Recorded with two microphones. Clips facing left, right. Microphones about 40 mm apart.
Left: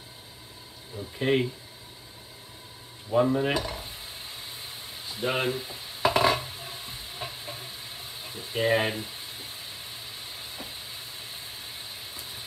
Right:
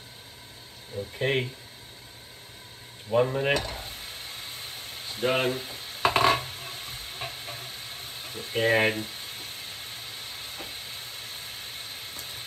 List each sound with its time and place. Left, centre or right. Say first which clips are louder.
1.1 s speech: left 2 dB; centre
3.1 s stir: even; right
3.5 s stir: right 1 dB; right